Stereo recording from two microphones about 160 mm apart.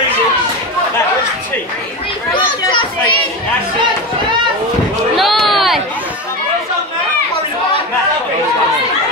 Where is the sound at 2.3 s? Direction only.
30° left (ahead or behind).